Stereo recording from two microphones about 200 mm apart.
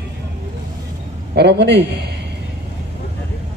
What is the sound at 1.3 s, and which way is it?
Speech, 55° right (ahead or behind).